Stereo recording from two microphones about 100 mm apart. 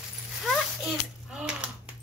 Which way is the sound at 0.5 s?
5° right (ahead or behind).